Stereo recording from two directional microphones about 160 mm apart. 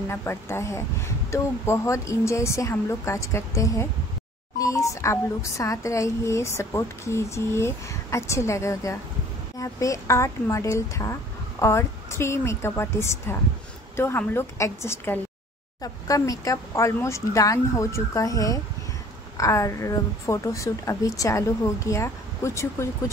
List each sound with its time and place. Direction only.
0.1 s a woman's voice: 15° left (ahead or behind)